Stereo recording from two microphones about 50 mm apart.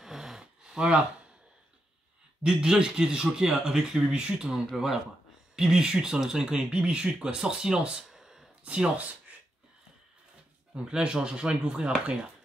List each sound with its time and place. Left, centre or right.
0.0 s a sound: centre
2.4 s speech: centre
4.5 s speech: centre
8.6 s speech: centre
10.7 s speech: centre